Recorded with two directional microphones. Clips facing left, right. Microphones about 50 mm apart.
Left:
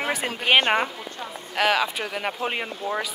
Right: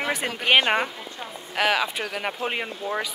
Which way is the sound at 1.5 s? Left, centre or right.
Centre.